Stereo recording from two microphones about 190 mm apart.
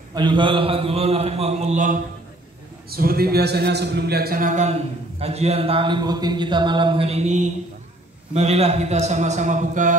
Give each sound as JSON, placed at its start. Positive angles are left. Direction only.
{"t": 0.1, "sound": "a man's voice", "side_deg": -25}
{"t": 2.9, "sound": "a man's voice", "side_deg": -50}